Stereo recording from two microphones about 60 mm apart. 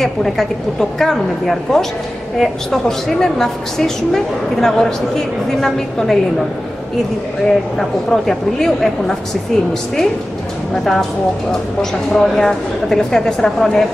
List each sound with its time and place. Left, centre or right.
0.0 s a woman's voice: centre
7.4 s a woman's voice: centre
10.7 s a woman's voice: centre